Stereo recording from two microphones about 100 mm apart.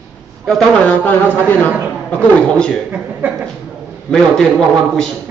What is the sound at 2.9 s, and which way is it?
Speech, 20° right (ahead or behind).